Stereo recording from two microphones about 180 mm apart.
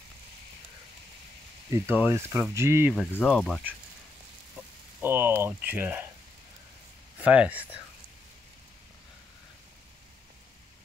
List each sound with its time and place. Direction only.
1.7 s speech: 10° right (ahead or behind)
3.1 s speech: 5° left (ahead or behind)
5.0 s speech: 10° right (ahead or behind)
7.2 s speech: 10° right (ahead or behind)